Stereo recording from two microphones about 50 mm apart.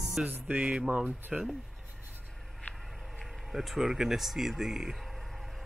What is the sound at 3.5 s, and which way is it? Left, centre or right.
Speech, centre.